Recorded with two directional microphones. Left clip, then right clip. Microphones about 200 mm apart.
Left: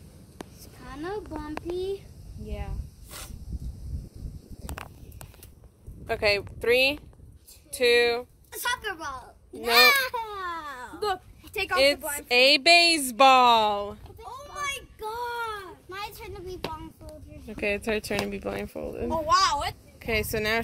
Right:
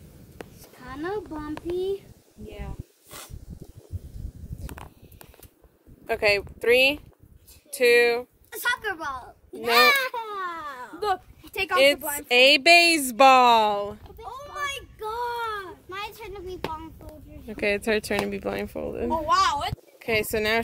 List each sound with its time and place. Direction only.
0.6 s a sound: centre (ahead or behind)
1.8 s speech: centre (ahead or behind)
2.4 s speech: 40° right (ahead or behind)
6.0 s a woman's voice: 5° right (ahead or behind)
9.6 s baby cry: 30° left (ahead or behind)
11.7 s a woman's voice: 5° right (ahead or behind)
12.0 s a woman's voice: 65° right (ahead or behind)
12.3 s a woman's voice: 5° right (ahead or behind)
14.2 s a sound: 5° left (ahead or behind)
15.9 s a sound: 30° left (ahead or behind)
17.5 s speech: centre (ahead or behind)
19.2 s speech: 25° right (ahead or behind)
20.0 s speech: 5° right (ahead or behind)